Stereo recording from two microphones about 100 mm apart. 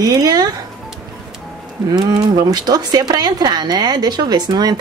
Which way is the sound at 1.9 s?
40° right (ahead or behind).